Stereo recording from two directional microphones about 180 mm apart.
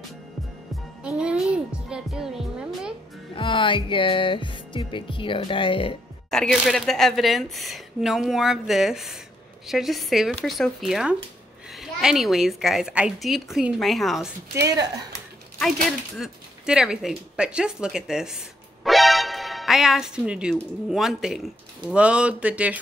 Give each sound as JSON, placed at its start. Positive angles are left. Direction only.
{"t": 1.0, "sound": "speech", "side_deg": -5}
{"t": 3.3, "sound": "music", "side_deg": 30}
{"t": 6.3, "sound": "a woman's voice", "side_deg": 0}
{"t": 16.2, "sound": "a woman's voice", "side_deg": -5}
{"t": 18.9, "sound": "music", "side_deg": 0}
{"t": 20.5, "sound": "a woman's voice", "side_deg": 0}